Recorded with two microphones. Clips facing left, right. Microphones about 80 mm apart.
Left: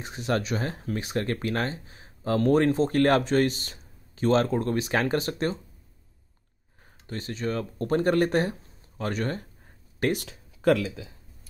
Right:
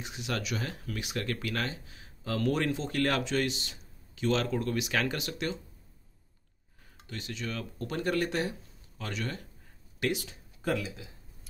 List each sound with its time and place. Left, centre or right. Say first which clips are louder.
0.0 s speech: left 7 dB; left
7.1 s speech: left 7 dB; left
10.2 s a sound: left 10 dB; left